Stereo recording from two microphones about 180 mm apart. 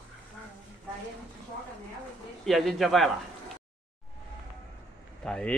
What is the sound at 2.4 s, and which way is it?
Speech, centre (ahead or behind).